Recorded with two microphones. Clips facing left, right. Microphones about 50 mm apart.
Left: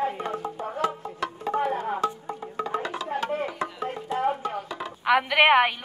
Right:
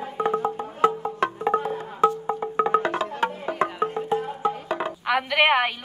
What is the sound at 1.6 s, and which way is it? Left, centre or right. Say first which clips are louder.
Music: left 3 dB; left.